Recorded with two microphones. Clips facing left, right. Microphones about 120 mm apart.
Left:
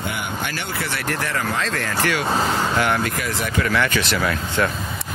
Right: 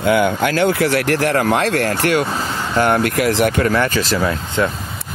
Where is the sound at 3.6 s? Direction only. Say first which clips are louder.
Right 4 dB; 35° right (ahead or behind).